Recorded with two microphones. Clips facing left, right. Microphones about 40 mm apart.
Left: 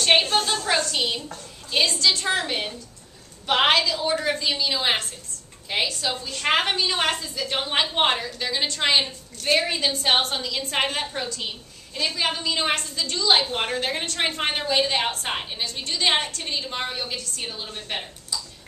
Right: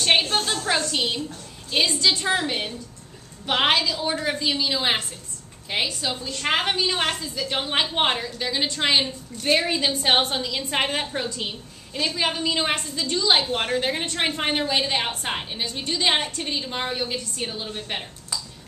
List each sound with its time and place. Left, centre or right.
0.0 s a woman's voice: centre
6.3 s a woman's voice: centre
11.9 s a woman's voice: centre
13.4 s a woman's voice: centre